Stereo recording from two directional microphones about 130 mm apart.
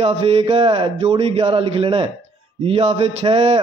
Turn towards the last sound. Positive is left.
turn(degrees=-50)  # may be behind; listen again after turning